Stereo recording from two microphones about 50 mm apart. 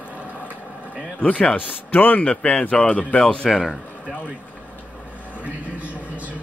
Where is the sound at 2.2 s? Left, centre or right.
Centre.